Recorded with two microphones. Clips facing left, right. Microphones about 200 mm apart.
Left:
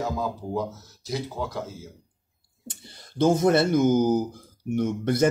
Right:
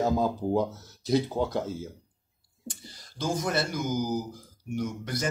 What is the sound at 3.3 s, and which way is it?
Speech, 55° left (ahead or behind).